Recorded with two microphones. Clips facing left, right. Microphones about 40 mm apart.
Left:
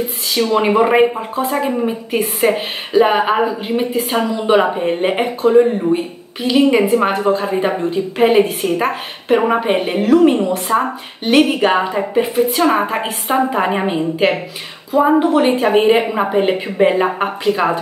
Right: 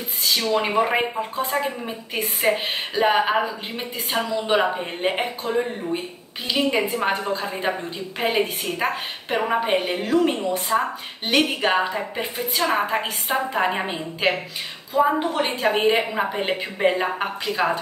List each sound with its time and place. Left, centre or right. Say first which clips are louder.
0.4 s a woman's voice: left 9 dB; centre
1.5 s a woman's voice: left 8 dB; centre
5.4 s a woman's voice: left 13 dB; left
7.1 s a woman's voice: left 7 dB; left
7.3 s a woman's voice: left 8 dB; centre
10.3 s a woman's voice: left 8 dB; left
11.2 s a woman's voice: left 8 dB; centre
12.5 s a woman's voice: left 6 dB; left